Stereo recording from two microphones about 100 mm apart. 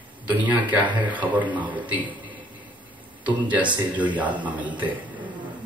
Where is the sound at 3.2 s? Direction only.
15° right (ahead or behind).